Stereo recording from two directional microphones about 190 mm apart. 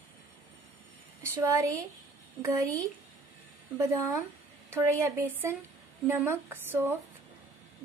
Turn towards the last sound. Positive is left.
turn(degrees=-10)  # may be behind; listen again after turning